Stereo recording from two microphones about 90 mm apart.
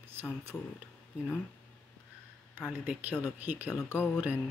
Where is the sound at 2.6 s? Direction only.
15° right (ahead or behind).